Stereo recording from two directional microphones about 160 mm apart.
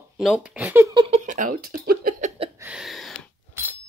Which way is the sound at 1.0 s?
40° right (ahead or behind).